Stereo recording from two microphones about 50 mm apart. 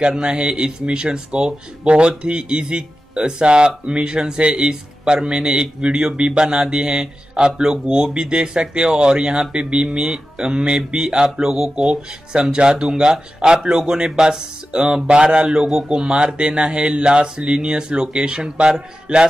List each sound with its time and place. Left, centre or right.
0.0 s speech: centre